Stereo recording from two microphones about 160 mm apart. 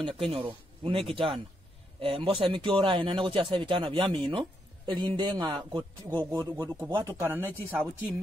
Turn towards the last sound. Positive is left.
turn(degrees=-10)  # may be behind; listen again after turning